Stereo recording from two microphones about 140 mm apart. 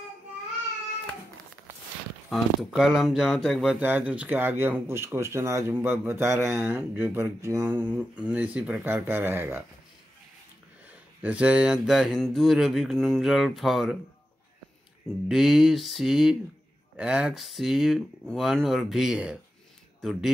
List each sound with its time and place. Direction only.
2.2 s mantra: centre (ahead or behind)
3.8 s speech: 10° right (ahead or behind)
11.2 s mantra: 10° right (ahead or behind)
15.2 s mantra: centre (ahead or behind)
20.0 s speech: centre (ahead or behind)